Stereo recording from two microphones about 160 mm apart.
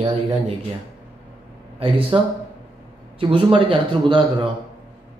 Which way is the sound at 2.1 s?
35° right (ahead or behind).